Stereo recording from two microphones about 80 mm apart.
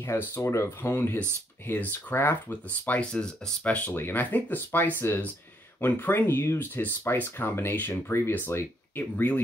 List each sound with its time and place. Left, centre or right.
0.0 s speech: left